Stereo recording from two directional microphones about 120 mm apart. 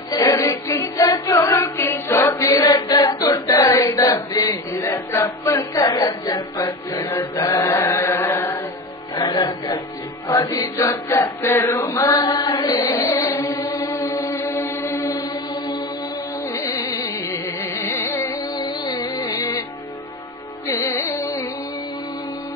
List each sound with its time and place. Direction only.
0.1 s music: 30° left (ahead or behind)
7.7 s chant: 20° left (ahead or behind)
9.1 s music: 35° left (ahead or behind)
10.2 s music: 25° left (ahead or behind)
13.4 s chant: 35° left (ahead or behind)
14.3 s music: 15° left (ahead or behind)
15.0 s chant: 35° left (ahead or behind)
16.5 s music: 30° left (ahead or behind)
18.3 s music: 35° left (ahead or behind)
21.1 s music: 25° left (ahead or behind)